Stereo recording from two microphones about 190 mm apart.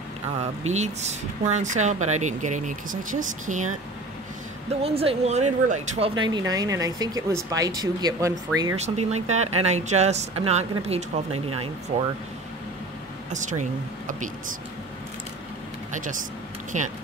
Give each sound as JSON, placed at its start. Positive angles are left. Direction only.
{"t": 0.4, "sound": "speech", "side_deg": -35}
{"t": 4.8, "sound": "speech", "side_deg": -30}
{"t": 8.7, "sound": "speech", "side_deg": -35}
{"t": 13.3, "sound": "speech", "side_deg": -40}
{"t": 15.9, "sound": "speech", "side_deg": -45}